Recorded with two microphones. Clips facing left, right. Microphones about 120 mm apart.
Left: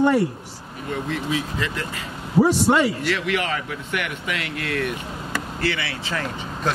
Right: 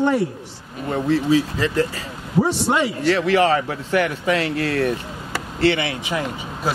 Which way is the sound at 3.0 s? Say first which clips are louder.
Right 7 dB; 35° right (ahead or behind).